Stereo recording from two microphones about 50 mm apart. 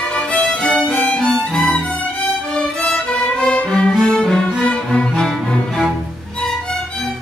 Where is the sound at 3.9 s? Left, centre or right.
Centre.